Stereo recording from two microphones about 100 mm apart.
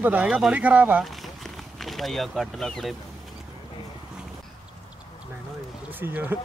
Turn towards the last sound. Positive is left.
turn(degrees=-20)  # may be behind; listen again after turning